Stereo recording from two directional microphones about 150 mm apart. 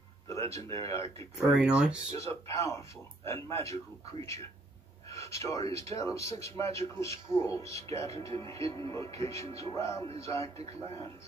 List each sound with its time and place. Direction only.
0.3 s speech: 20° left (ahead or behind)
1.5 s speech: 5° right (ahead or behind)
2.1 s speech: 20° left (ahead or behind)